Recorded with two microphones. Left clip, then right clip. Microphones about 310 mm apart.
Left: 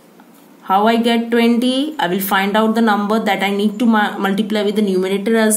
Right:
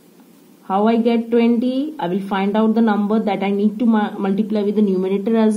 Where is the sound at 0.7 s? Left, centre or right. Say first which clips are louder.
Left 3 dB; centre.